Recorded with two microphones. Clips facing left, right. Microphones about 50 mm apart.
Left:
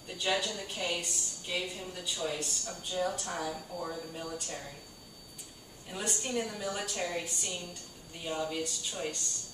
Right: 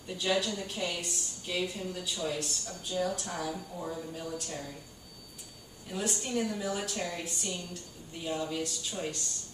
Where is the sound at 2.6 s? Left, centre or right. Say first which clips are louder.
Left 1 dB; centre.